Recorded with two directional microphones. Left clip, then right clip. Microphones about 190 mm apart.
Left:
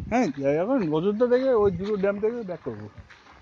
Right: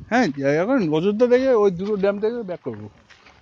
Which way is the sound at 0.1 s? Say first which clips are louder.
Right 4 dB; 30° right (ahead or behind).